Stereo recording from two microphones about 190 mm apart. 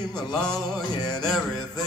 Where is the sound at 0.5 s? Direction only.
20° left (ahead or behind).